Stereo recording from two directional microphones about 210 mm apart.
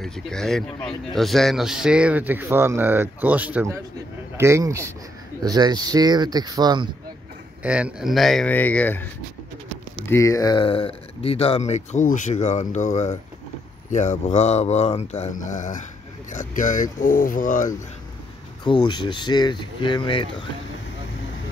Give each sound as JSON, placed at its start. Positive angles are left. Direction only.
{"t": 0.0, "sound": "a man's voice", "side_deg": 0}
{"t": 7.6, "sound": "a man's voice", "side_deg": -5}
{"t": 10.0, "sound": "speech", "side_deg": 15}
{"t": 18.6, "sound": "speech", "side_deg": 20}